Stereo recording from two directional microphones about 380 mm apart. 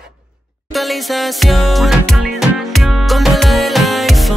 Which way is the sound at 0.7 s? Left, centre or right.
Centre.